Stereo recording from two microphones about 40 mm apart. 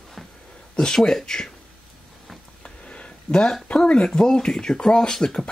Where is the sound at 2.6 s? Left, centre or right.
Left.